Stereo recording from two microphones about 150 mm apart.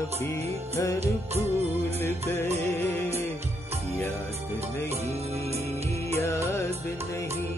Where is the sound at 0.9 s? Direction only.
45° right (ahead or behind).